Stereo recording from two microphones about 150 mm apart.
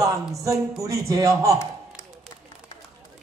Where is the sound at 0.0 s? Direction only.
20° right (ahead or behind).